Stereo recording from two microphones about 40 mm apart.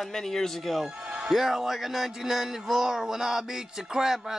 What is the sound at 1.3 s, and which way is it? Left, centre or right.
Speech, centre.